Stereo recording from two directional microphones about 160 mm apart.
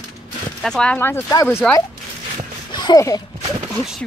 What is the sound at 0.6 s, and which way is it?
Speech, 5° left (ahead or behind).